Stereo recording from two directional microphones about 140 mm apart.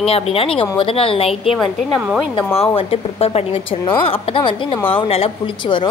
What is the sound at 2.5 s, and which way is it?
Speech, 45° left (ahead or behind).